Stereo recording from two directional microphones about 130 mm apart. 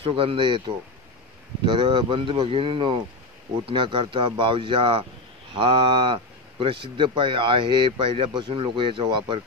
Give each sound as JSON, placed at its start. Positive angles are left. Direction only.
{"t": 0.0, "sound": "speech", "side_deg": -45}